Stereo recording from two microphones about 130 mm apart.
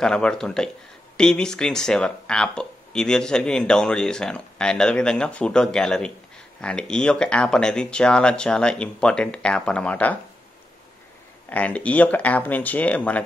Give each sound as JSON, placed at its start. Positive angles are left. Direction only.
{"t": 0.0, "sound": "speech", "side_deg": 5}
{"t": 11.4, "sound": "speech", "side_deg": 10}